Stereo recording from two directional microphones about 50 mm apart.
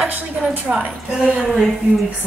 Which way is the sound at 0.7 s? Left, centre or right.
Right.